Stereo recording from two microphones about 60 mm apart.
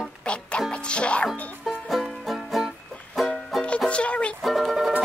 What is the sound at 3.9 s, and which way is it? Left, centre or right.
Music, centre.